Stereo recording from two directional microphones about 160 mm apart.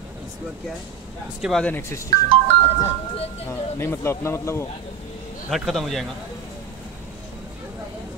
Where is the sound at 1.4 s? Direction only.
5° left (ahead or behind).